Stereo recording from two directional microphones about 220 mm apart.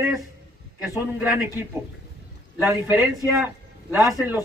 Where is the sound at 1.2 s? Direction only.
10° right (ahead or behind).